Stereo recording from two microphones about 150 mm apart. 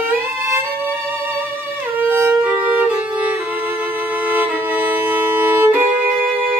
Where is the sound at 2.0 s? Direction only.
10° right (ahead or behind).